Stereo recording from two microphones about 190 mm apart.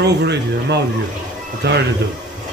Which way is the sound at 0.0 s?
60° right (ahead or behind).